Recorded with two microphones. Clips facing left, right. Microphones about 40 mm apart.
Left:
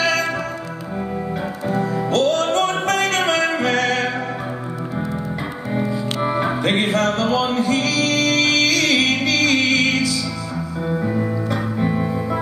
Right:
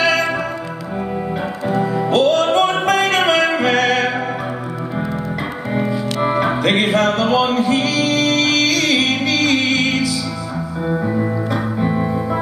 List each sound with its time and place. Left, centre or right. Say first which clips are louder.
0.0 s music: right 3 dB; right
1.7 s music: right 3 dB; right
6.2 s music: right 4 dB; right
7.5 s music: right 2 dB; centre